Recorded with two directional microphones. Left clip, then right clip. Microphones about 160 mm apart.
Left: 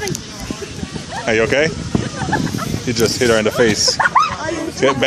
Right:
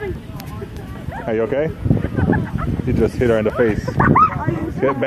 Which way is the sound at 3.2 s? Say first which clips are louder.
Left 3 dB; 15° left (ahead or behind).